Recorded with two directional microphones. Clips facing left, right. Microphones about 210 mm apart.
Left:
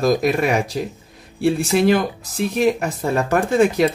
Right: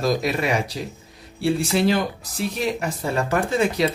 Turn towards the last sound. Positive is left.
turn(degrees=50)  # may be behind; listen again after turning